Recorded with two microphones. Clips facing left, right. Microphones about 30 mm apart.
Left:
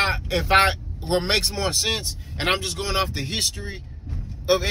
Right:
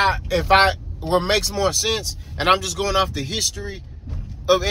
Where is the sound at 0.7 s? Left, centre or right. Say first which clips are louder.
Right 4 dB; left.